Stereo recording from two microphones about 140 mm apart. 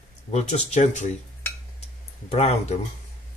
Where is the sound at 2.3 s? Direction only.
50° left (ahead or behind).